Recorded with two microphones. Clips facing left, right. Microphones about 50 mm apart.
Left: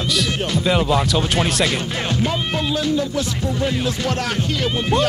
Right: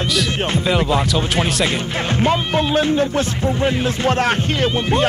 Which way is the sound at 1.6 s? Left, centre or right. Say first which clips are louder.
Right 1 dB; right.